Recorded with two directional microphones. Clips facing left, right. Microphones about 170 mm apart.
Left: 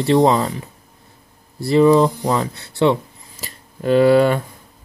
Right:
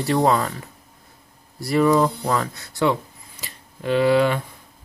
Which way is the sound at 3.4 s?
40° left (ahead or behind).